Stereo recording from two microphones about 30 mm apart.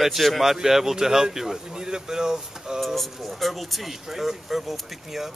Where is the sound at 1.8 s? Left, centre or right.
Right.